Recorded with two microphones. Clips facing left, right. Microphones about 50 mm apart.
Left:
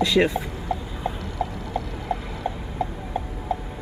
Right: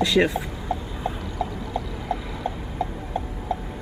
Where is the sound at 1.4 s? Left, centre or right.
Left.